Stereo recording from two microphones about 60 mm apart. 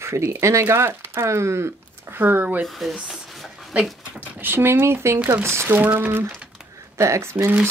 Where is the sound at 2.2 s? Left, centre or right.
Right.